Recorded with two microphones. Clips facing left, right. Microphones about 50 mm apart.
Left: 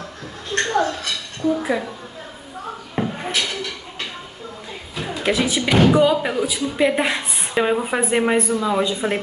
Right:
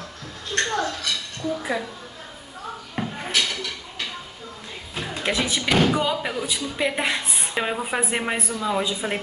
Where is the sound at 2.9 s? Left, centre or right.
Centre.